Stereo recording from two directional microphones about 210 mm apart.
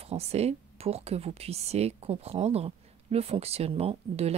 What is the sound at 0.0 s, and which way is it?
A woman's voice, 30° right (ahead or behind).